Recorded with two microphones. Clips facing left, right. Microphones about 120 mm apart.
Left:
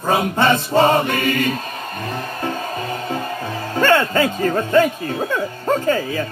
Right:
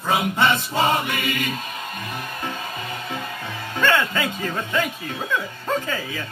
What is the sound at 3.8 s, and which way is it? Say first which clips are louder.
Speech: left 6 dB; 45° left (ahead or behind).